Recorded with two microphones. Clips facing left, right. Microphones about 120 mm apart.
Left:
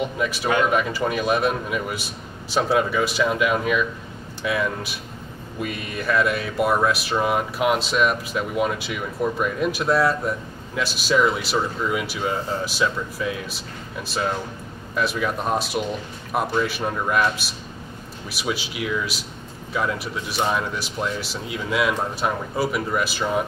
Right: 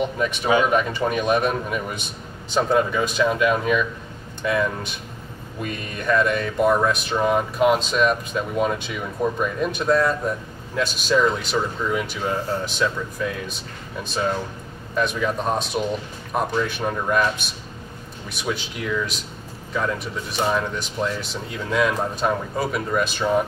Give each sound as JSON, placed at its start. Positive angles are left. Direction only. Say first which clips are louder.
{"t": 0.2, "sound": "speech", "louder": "right 1 dB", "side_deg": 5}
{"t": 9.2, "sound": "speech", "louder": "right 1 dB", "side_deg": -35}
{"t": 9.6, "sound": "speech", "louder": "right 1 dB", "side_deg": 5}
{"t": 15.0, "sound": "speech", "louder": "right 1 dB", "side_deg": 5}